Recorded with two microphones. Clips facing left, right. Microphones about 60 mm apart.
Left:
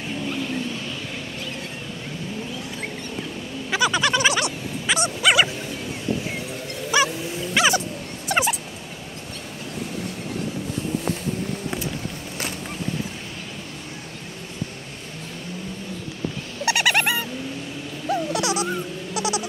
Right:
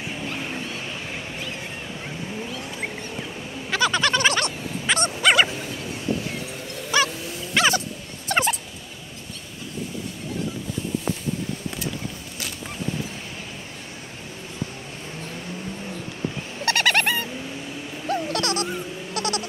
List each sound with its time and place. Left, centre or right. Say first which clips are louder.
0.1 s a sound: left 5 dB; centre
3.7 s bow-wow: left 1 dB; centre
6.9 s vehicle: left 1 dB; centre
8.3 s turkey: even; centre
16.6 s a sound: even; centre
19.1 s bleat: left 2 dB; centre